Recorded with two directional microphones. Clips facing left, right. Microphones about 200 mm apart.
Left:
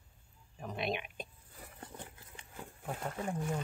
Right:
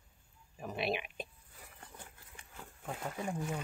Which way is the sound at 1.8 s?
20° left (ahead or behind).